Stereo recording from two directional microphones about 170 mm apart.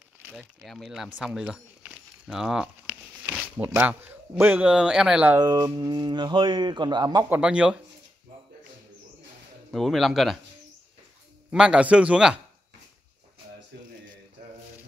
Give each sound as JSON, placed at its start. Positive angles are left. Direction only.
{"t": 0.3, "sound": "speech", "side_deg": 0}
{"t": 5.4, "sound": "speech", "side_deg": -25}
{"t": 7.2, "sound": "speech", "side_deg": -5}
{"t": 9.7, "sound": "speech", "side_deg": 0}
{"t": 11.5, "sound": "speech", "side_deg": -5}